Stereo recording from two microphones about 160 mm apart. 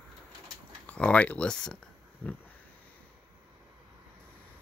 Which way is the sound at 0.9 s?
10° left (ahead or behind).